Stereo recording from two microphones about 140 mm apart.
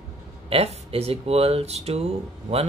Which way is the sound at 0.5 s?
45° right (ahead or behind).